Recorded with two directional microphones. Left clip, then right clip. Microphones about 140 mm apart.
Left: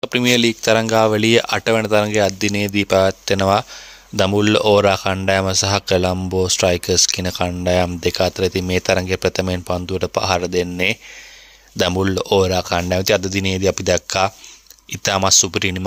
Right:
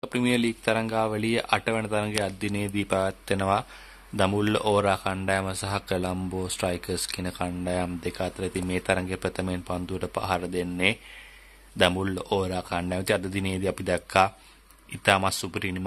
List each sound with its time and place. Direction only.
0.0 s speech: 40° left (ahead or behind)
12.0 s speech: 40° left (ahead or behind)